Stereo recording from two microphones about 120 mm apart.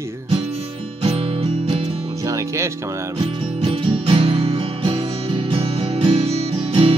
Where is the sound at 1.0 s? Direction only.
50° right (ahead or behind).